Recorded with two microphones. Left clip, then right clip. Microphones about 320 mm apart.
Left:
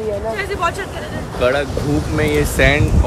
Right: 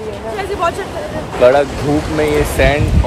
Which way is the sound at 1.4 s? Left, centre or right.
Centre.